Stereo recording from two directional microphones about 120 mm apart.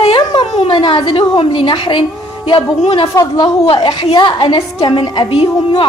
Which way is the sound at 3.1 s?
30° left (ahead or behind).